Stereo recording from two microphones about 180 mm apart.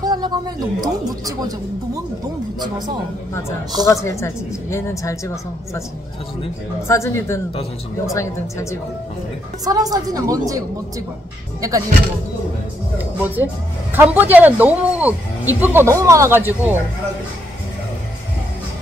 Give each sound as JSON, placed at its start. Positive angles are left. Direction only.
{"t": 0.0, "sound": "speech", "side_deg": -25}
{"t": 3.8, "sound": "a woman's voice", "side_deg": 15}
{"t": 6.9, "sound": "a woman's voice", "side_deg": 15}
{"t": 9.7, "sound": "a woman's voice", "side_deg": -20}
{"t": 12.9, "sound": "speech", "side_deg": -10}